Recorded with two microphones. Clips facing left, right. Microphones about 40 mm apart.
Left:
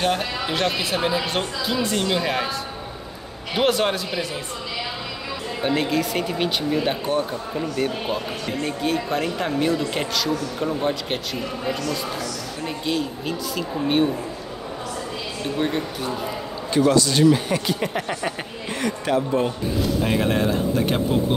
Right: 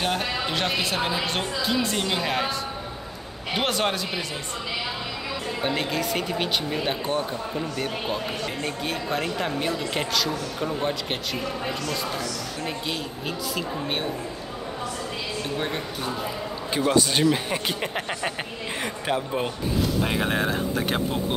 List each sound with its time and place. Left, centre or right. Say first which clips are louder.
0.5 s speech: left 4 dB; centre
3.5 s speech: left 4 dB; centre
5.6 s speech: left 5 dB; centre
12.6 s speech: left 7 dB; centre
16.7 s a man's voice: left 4 dB; centre
18.8 s speech: left 5 dB; centre
19.8 s speech: left 3 dB; centre